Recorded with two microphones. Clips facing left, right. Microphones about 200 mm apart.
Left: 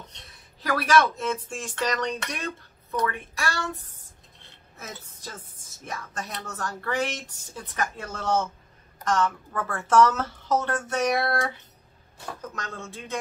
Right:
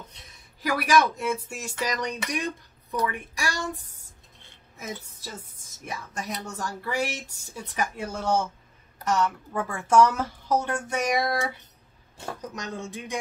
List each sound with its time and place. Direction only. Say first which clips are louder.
0.1 s a woman's voice: left 1 dB; 10° right (ahead or behind)